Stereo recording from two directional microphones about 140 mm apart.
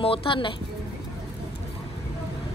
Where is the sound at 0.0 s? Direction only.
40° left (ahead or behind).